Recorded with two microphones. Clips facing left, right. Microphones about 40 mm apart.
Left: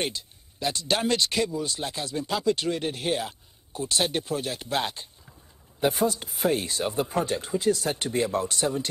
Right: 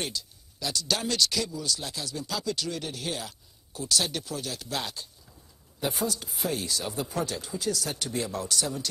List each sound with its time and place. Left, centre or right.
0.0 s speech: left